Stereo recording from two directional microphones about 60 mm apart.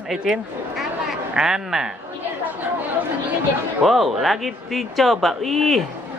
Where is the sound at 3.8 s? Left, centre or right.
Centre.